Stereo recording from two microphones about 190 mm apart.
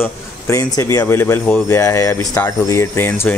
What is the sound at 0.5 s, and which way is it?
Speech, 15° left (ahead or behind).